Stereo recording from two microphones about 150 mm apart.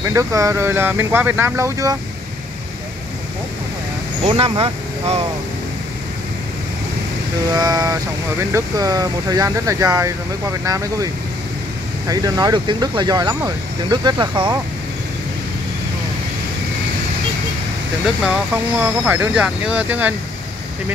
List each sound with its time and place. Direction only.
0.0 s speech: 20° right (ahead or behind)
4.2 s speech: 40° right (ahead or behind)
7.5 s speech: 25° right (ahead or behind)
12.1 s speech: 25° right (ahead or behind)
18.8 s speech: 15° right (ahead or behind)